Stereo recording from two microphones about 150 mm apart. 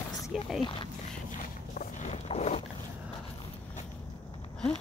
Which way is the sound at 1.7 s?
55° left (ahead or behind).